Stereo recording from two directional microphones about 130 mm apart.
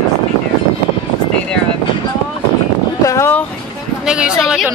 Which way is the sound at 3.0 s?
20° left (ahead or behind).